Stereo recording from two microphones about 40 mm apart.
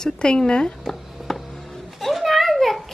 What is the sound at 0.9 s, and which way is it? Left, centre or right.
Chop, centre.